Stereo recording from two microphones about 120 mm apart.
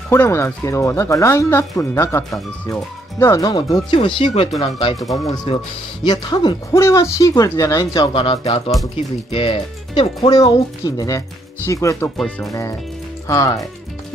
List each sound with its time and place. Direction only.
0.1 s speech: 20° left (ahead or behind)
3.9 s speech: 50° left (ahead or behind)
6.0 s speech: 40° left (ahead or behind)
6.7 s speech: 25° left (ahead or behind)
11.0 s speech: 25° left (ahead or behind)
12.2 s speech: 5° left (ahead or behind)
13.3 s speech: 30° left (ahead or behind)